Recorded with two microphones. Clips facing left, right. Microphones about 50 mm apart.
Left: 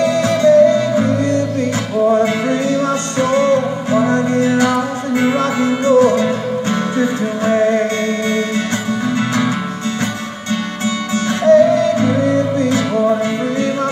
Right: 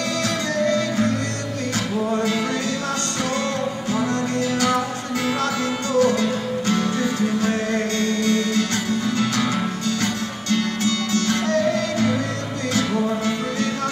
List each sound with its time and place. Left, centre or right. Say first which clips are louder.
0.0 s music: left 11 dB; left
2.2 s music: left 6 dB; left
10.5 s music: left 2 dB; left